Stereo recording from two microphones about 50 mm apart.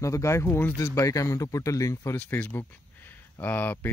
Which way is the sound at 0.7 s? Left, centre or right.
Left.